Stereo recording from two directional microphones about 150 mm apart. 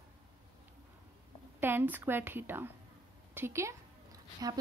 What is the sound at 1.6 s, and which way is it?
A woman's voice, 15° right (ahead or behind).